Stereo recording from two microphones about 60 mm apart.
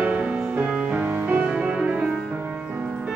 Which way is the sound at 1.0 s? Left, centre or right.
Right.